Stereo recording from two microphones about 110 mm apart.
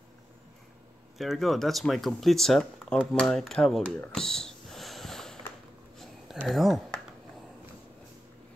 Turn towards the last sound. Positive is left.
turn(degrees=0)  # may be behind; listen again after turning